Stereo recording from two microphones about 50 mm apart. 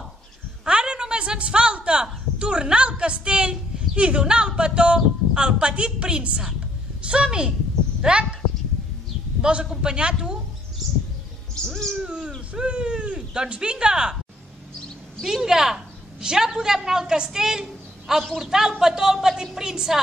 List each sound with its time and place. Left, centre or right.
0.7 s a woman's voice: centre
9.4 s a man's voice: right
11.9 s owl: centre
12.5 s speech: centre
15.2 s a woman's voice: centre